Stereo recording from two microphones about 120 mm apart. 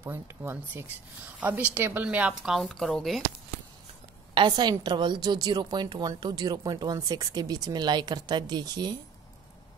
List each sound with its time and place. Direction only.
0.0 s a woman's voice: 20° right (ahead or behind)
2.6 s speech: 5° left (ahead or behind)
4.3 s a woman's voice: 40° right (ahead or behind)